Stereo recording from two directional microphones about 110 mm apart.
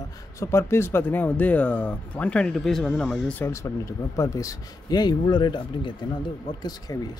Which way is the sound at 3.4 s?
25° left (ahead or behind).